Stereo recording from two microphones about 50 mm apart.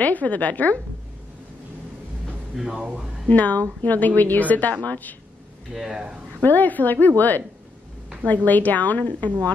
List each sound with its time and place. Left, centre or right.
0.0 s a woman's voice: left
2.5 s speech: centre
3.3 s a woman's voice: left
5.7 s speech: centre
6.4 s a woman's voice: left
8.5 s a woman's voice: left